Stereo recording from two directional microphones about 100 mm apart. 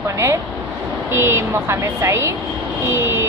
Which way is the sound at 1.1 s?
25° right (ahead or behind).